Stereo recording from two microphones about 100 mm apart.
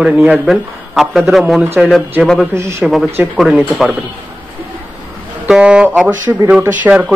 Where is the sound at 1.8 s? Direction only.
15° right (ahead or behind).